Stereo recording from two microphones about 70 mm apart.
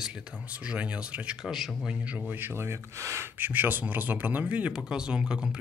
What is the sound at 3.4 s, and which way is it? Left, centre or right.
Speech, right.